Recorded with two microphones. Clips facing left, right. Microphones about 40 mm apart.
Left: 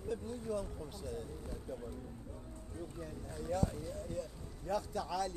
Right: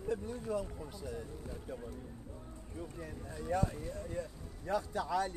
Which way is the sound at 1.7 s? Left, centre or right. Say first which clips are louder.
Even; right.